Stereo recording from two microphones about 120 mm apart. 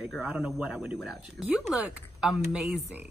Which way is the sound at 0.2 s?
10° right (ahead or behind).